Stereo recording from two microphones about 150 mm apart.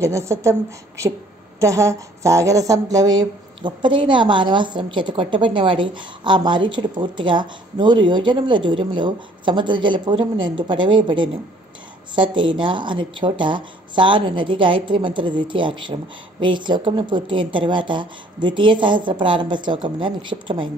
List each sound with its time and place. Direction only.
0.0 s a woman's voice: 20° right (ahead or behind)